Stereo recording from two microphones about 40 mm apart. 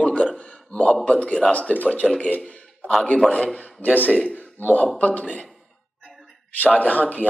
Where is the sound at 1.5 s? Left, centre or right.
Left.